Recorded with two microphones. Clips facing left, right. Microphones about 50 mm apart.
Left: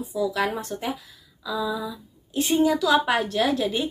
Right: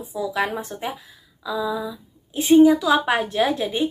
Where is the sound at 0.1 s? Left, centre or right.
Right.